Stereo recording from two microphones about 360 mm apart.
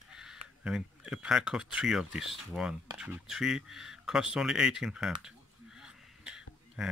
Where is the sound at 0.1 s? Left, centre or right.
Centre.